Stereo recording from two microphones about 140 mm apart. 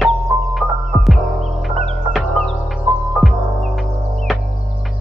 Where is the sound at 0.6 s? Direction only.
Centre (ahead or behind).